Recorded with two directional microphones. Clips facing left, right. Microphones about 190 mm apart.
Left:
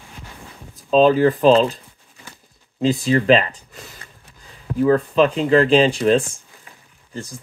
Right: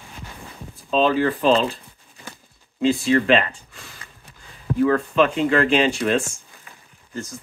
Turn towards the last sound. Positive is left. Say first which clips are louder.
# left 4 dB
turn(degrees=35)  # may be behind; listen again after turning